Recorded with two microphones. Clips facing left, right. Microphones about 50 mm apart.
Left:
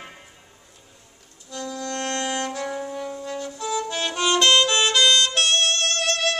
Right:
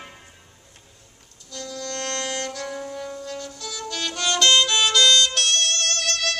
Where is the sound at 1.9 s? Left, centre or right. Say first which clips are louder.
Left 2 dB; centre.